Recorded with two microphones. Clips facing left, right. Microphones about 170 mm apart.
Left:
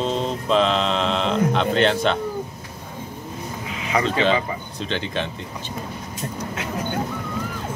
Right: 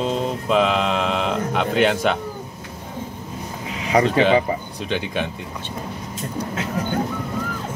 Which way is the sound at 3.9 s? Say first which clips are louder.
Right 5 dB; 35° right (ahead or behind).